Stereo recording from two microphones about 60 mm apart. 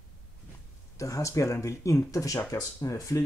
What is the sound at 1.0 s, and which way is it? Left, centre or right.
Speech, left.